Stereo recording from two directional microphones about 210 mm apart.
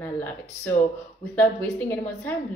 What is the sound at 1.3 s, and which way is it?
A woman's voice, 10° left (ahead or behind).